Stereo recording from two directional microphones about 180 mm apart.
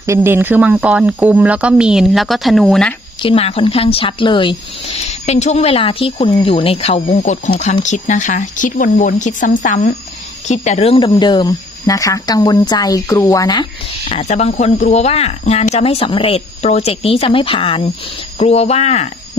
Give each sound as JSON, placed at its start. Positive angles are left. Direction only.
{"t": 0.0, "sound": "speech", "side_deg": -15}
{"t": 3.2, "sound": "speech", "side_deg": 30}